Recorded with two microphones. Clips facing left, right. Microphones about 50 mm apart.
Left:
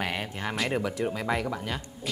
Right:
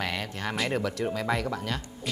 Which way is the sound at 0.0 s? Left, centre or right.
Left.